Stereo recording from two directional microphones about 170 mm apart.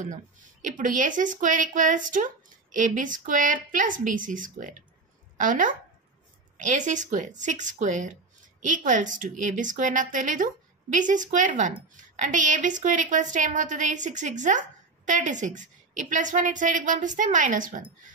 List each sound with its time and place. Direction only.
0.0 s a woman's voice: 50° right (ahead or behind)